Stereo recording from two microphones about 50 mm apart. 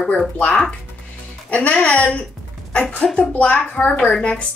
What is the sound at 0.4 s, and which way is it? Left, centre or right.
A woman's voice, left.